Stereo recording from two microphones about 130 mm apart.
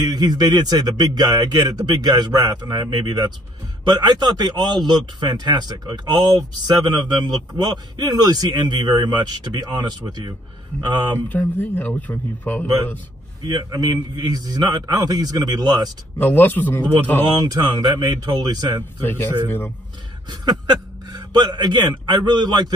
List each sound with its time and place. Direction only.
0.0 s a man's voice: 30° right (ahead or behind)
11.1 s a man's voice: 15° left (ahead or behind)
13.4 s a man's voice: 35° right (ahead or behind)
16.2 s a man's voice: 15° left (ahead or behind)
17.5 s a man's voice: 30° right (ahead or behind)
19.0 s a man's voice: 15° left (ahead or behind)
21.1 s a man's voice: 35° right (ahead or behind)